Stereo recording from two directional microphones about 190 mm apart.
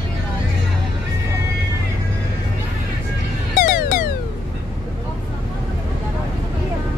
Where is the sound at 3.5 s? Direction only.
45° left (ahead or behind).